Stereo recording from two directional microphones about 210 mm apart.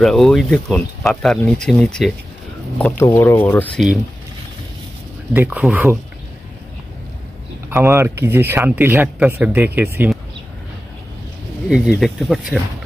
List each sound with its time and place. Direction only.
0.0 s speech: centre (ahead or behind)
3.7 s speech: centre (ahead or behind)
5.3 s speech: 10° right (ahead or behind)
7.7 s speech: 10° right (ahead or behind)
11.7 s speech: 5° right (ahead or behind)